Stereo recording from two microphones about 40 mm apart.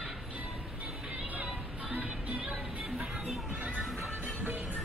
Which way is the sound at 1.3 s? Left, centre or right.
Right.